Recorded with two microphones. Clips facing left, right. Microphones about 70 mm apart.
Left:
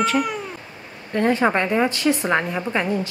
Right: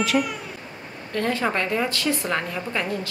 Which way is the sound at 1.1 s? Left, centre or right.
Left.